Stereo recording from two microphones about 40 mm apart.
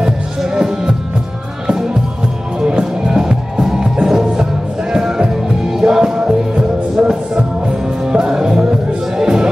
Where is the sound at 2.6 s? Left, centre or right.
Centre.